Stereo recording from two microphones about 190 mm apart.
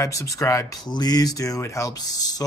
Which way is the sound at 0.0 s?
15° left (ahead or behind).